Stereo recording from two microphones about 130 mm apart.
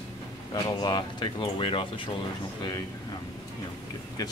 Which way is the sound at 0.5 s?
35° left (ahead or behind).